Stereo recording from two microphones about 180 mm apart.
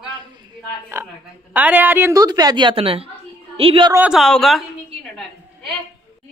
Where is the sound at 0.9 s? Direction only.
15° right (ahead or behind); by 3.9 s 30° right (ahead or behind).